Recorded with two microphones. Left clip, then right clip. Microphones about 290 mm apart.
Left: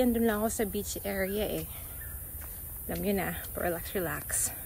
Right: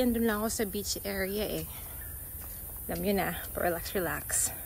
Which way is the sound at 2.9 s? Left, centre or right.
Centre.